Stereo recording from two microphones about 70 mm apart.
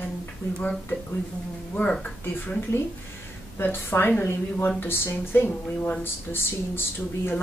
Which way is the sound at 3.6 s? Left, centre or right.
Left.